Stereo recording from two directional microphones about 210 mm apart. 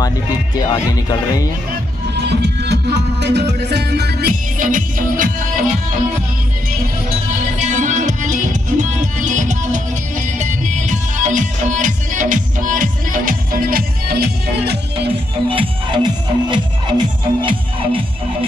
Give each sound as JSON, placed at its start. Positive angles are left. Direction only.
{"t": 2.2, "sound": "music", "side_deg": -50}
{"t": 7.3, "sound": "music", "side_deg": -35}
{"t": 15.5, "sound": "music", "side_deg": -25}